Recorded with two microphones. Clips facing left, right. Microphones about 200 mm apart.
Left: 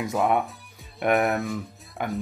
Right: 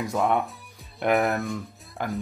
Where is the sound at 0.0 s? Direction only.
Centre (ahead or behind).